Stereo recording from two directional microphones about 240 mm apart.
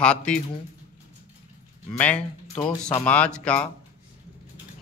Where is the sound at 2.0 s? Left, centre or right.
Centre.